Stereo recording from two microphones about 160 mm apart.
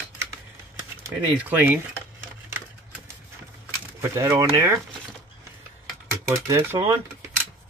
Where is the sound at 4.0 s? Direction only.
15° right (ahead or behind).